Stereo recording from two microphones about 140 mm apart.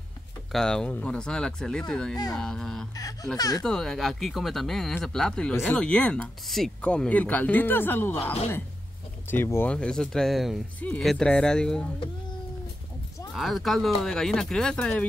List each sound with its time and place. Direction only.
0.5 s speech: 5° left (ahead or behind)
3.0 s speech: 25° left (ahead or behind)
3.6 s speech: 5° left (ahead or behind)
13.3 s speech: centre (ahead or behind)